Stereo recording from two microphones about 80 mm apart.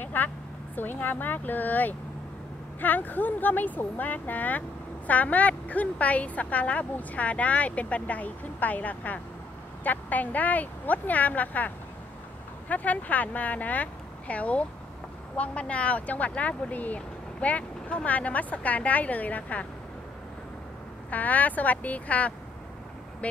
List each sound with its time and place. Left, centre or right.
0.0 s a sound: left
0.7 s speech: left
21.1 s speech: centre